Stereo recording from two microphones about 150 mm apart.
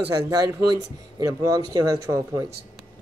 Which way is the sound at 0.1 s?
25° right (ahead or behind).